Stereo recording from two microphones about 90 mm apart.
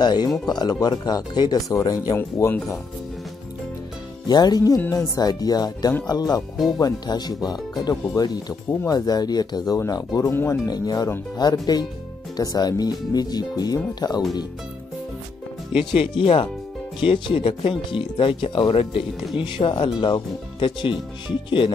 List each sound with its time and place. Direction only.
0.0 s speech: 50° left (ahead or behind)
2.1 s speech: 30° left (ahead or behind)
4.3 s speech: 50° left (ahead or behind)
7.9 s speech: 25° left (ahead or behind)
8.2 s speech: 45° left (ahead or behind)
10.3 s speech: 25° left (ahead or behind)
10.6 s speech: 45° left (ahead or behind)
16.0 s speech: 85° left
19.3 s speech: 70° left (ahead or behind)